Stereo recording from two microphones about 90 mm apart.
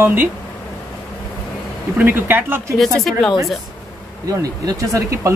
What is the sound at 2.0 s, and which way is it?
Speech, 25° right (ahead or behind).